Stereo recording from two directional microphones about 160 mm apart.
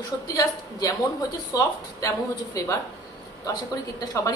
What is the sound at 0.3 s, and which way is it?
A woman's voice, 20° left (ahead or behind).